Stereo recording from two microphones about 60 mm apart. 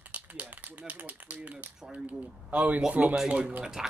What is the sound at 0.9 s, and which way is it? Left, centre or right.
Speech, right.